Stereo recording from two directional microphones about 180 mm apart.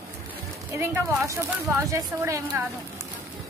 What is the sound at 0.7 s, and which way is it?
Speech, 15° right (ahead or behind).